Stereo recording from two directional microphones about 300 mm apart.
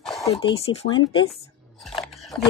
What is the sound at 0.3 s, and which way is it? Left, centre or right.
Speech, centre.